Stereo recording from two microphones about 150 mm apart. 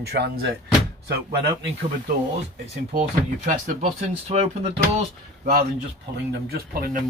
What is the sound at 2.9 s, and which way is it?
Speech, 65° right (ahead or behind).